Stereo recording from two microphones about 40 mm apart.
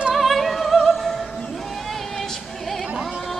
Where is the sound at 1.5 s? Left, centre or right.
Centre.